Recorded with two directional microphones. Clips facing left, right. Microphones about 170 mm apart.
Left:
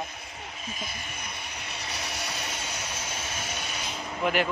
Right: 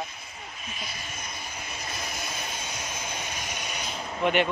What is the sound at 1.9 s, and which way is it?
Vehicle, 75° left (ahead or behind).